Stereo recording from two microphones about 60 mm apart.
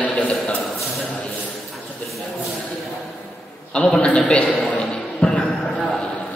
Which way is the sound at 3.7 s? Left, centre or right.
Centre.